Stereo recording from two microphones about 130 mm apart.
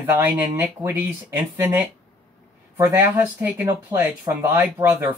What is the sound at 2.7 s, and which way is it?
Speech, 20° right (ahead or behind).